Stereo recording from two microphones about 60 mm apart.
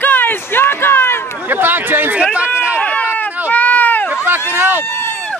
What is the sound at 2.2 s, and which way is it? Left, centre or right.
Speech, centre.